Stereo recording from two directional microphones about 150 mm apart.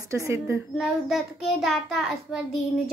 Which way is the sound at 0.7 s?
Centre (ahead or behind).